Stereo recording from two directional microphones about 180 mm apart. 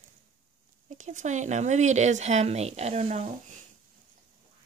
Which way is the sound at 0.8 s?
45° right (ahead or behind).